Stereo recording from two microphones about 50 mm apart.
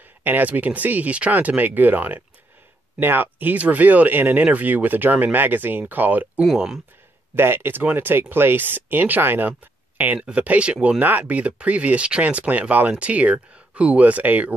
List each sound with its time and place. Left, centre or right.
0.2 s speech: right
7.3 s speech: right
9.5 s a sound: right
10.1 s speech: right
11.0 s speech: right